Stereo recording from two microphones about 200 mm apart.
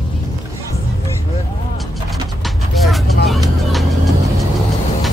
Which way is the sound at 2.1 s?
Centre (ahead or behind).